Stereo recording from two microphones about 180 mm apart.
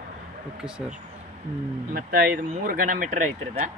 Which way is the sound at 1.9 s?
55° right (ahead or behind).